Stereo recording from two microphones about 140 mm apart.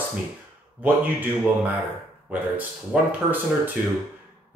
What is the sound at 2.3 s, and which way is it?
Speech, 10° right (ahead or behind).